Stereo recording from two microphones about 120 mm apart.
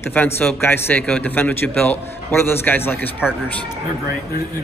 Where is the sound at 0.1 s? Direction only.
15° left (ahead or behind).